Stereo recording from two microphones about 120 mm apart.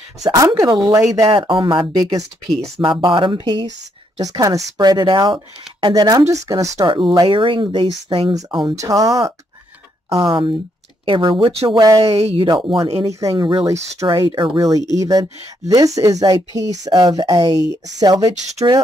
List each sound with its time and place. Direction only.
0.2 s speech: 25° right (ahead or behind)
1.4 s speech: 40° right (ahead or behind)
2.0 s speech: 30° right (ahead or behind)
4.2 s speech: 30° right (ahead or behind)
6.9 s speech: 45° right (ahead or behind)
11.8 s speech: 35° right (ahead or behind)
12.1 s speech: 55° right (ahead or behind)
12.4 s speech: 40° right (ahead or behind)
13.0 s speech: 25° right (ahead or behind)
13.4 s speech: 45° right (ahead or behind)
15.0 s speech: 30° right (ahead or behind)